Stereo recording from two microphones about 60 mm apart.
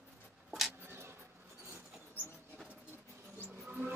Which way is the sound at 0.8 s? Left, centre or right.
Right.